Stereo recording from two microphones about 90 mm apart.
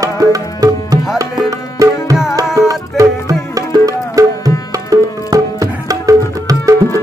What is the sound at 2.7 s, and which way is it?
Music, 40° right (ahead or behind).